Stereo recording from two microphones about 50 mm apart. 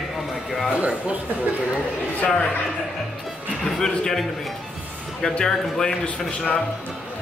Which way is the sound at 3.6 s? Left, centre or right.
Centre.